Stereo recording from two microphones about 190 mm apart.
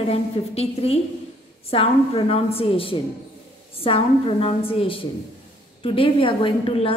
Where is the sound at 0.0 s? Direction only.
35° left (ahead or behind).